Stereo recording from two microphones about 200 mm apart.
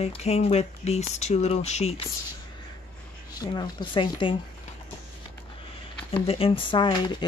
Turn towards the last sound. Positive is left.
turn(degrees=25)  # may be behind; listen again after turning